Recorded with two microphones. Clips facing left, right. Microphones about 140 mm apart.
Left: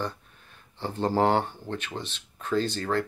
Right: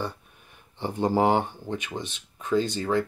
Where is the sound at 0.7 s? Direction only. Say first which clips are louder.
Right 1 dB; 15° right (ahead or behind).